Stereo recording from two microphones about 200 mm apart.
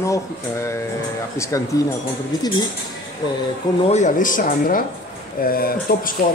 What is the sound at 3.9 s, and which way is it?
Speech, 40° left (ahead or behind).